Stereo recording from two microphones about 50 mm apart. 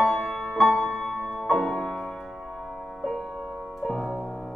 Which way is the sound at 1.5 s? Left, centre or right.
Centre.